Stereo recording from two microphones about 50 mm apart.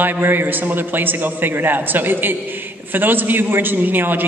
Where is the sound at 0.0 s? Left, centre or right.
Right.